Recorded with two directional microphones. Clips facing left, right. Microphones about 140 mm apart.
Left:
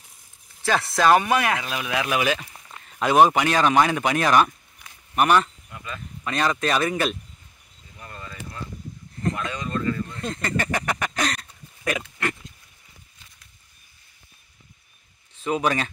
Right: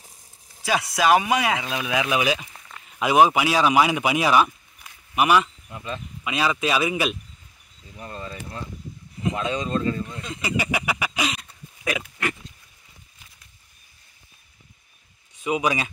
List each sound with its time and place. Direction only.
0.9 s speech: 10° right (ahead or behind)
5.7 s speech: 25° right (ahead or behind)
6.2 s speech: 5° right (ahead or behind)
8.0 s speech: 25° right (ahead or behind)
10.3 s a sound: 10° right (ahead or behind)
15.3 s speech: 10° right (ahead or behind)